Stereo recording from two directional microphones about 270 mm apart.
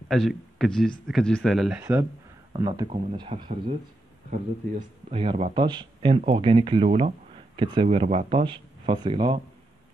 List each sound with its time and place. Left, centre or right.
0.1 s speech: centre
5.1 s speech: centre